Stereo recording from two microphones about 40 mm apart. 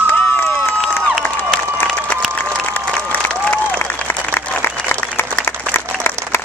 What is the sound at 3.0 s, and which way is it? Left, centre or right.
Applause, left.